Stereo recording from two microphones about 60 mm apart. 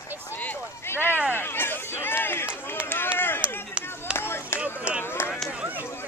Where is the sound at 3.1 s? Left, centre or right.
Left.